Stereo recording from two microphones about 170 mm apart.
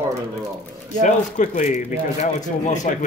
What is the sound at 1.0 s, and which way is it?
A man's voice, 45° left (ahead or behind).